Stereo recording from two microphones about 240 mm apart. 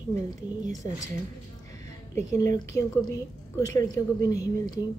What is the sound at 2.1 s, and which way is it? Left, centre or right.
A woman's voice, centre.